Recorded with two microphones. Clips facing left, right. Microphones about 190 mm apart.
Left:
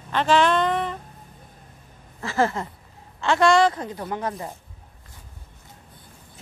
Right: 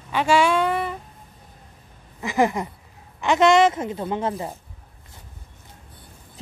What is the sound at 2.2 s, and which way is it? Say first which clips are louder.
A woman's voice: right 2 dB; 15° right (ahead or behind).